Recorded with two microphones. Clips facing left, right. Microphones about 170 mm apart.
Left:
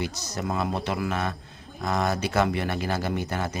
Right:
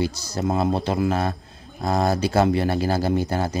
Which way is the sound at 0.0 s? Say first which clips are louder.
Right 6 dB; 30° right (ahead or behind).